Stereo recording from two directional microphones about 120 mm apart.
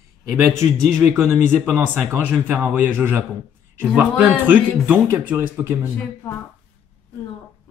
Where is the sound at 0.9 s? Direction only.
20° right (ahead or behind).